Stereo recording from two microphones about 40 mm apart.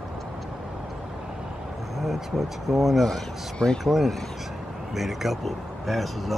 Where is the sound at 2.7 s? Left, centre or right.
Centre.